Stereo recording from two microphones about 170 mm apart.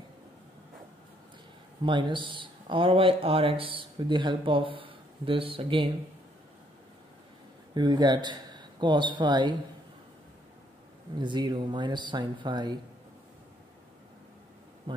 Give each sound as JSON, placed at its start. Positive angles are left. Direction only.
{"t": 1.8, "sound": "speech", "side_deg": -30}
{"t": 7.7, "sound": "speech", "side_deg": -25}
{"t": 11.1, "sound": "speech", "side_deg": -25}
{"t": 14.9, "sound": "a sound", "side_deg": -30}